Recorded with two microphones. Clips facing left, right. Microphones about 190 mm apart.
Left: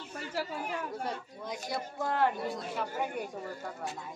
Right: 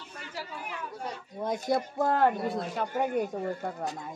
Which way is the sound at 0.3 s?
40° left (ahead or behind).